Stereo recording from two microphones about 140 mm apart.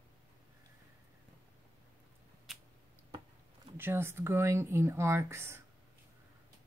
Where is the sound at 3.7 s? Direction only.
15° right (ahead or behind).